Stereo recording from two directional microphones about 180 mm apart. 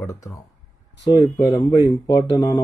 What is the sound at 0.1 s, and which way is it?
Speech, 20° left (ahead or behind).